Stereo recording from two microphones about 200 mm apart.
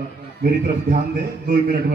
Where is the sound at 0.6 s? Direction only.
45° right (ahead or behind).